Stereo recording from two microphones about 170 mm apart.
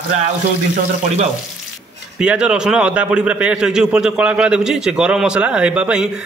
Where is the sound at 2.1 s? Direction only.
5° right (ahead or behind).